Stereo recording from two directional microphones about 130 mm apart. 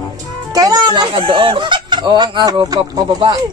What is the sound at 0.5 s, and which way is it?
Speech, 30° right (ahead or behind).